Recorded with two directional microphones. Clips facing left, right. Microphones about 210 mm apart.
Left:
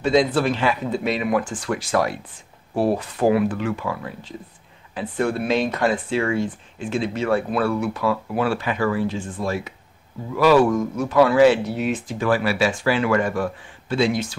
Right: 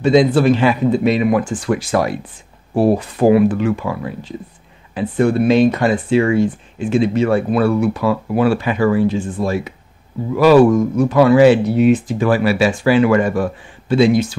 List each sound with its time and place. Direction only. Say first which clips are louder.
0.0 s speech: right 6 dB; centre (ahead or behind)
1.9 s a man's voice: right 2 dB; 15° right (ahead or behind)
2.7 s speech: right 6 dB; 25° right (ahead or behind)
4.9 s a man's voice: right 8 dB; 5° right (ahead or behind)
12.2 s a man's voice: right 5 dB; 15° right (ahead or behind)